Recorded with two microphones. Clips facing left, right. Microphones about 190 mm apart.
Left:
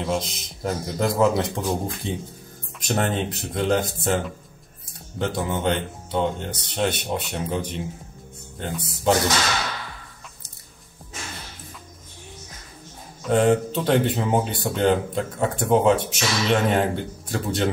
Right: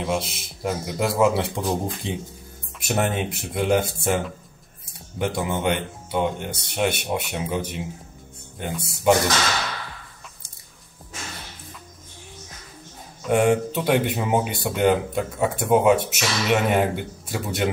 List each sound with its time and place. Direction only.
0.0 s speech: 5° right (ahead or behind)
2.0 s speech: 15° right (ahead or behind)
5.2 s speech: 10° right (ahead or behind)
13.3 s speech: 10° right (ahead or behind)